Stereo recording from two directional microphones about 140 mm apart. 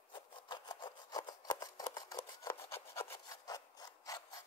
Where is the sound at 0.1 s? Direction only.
35° left (ahead or behind).